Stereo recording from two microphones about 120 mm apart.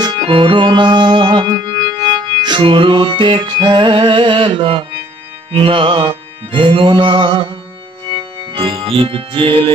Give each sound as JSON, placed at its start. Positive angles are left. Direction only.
{"t": 0.3, "sound": "music", "side_deg": -45}